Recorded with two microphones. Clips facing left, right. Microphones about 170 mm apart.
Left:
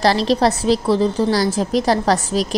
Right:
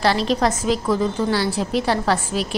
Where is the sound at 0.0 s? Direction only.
35° left (ahead or behind).